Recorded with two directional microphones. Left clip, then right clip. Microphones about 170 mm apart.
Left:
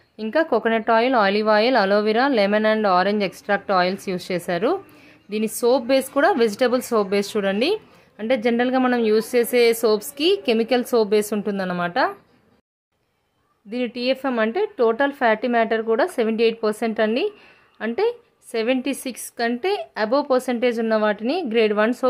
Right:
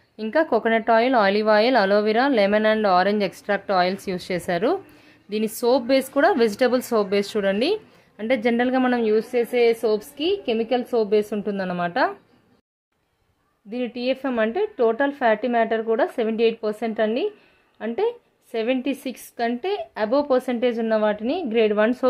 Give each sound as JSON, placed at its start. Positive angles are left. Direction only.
{"t": 0.2, "sound": "a woman's voice", "side_deg": 5}
{"t": 9.1, "sound": "a woman's voice", "side_deg": 20}
{"t": 13.7, "sound": "a woman's voice", "side_deg": 5}